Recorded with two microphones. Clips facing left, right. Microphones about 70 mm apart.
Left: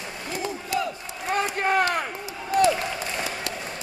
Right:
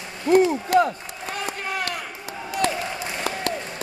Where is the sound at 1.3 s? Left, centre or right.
Left.